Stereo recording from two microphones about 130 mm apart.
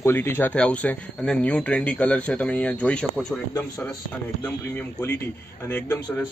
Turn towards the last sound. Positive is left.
turn(degrees=15)  # may be behind; listen again after turning